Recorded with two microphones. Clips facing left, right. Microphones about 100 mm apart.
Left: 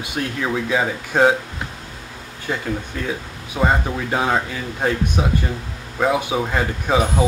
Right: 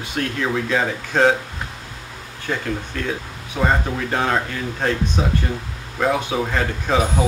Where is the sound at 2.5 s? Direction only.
15° left (ahead or behind).